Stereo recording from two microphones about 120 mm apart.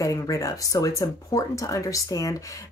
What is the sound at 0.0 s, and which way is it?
Speech, 30° left (ahead or behind).